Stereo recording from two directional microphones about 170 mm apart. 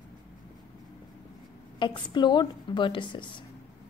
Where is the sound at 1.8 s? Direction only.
25° left (ahead or behind).